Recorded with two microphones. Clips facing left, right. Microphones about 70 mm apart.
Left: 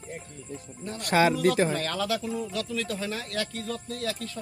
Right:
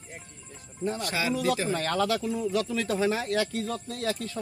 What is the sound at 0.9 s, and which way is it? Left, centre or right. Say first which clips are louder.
Speech: left 11 dB; left.